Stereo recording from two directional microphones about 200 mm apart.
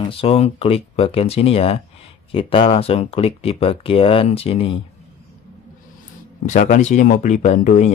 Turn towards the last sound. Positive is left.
turn(degrees=35)  # may be behind; listen again after turning